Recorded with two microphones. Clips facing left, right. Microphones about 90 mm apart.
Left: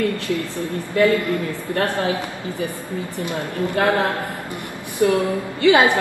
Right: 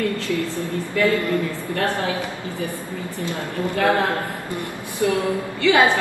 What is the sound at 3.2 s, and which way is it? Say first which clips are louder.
Speech: left 1 dB; 20° left (ahead or behind).